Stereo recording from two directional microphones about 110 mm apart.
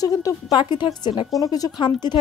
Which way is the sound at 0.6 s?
45° left (ahead or behind).